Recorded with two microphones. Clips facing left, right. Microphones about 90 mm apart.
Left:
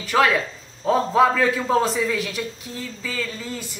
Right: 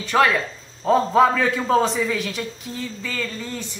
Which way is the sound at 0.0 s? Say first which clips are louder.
Right 1 dB; 5° left (ahead or behind).